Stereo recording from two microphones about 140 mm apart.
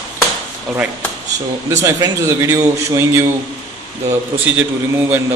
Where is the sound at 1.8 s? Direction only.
20° right (ahead or behind).